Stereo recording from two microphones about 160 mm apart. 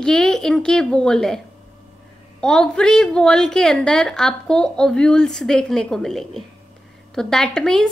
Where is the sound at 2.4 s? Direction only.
5° left (ahead or behind).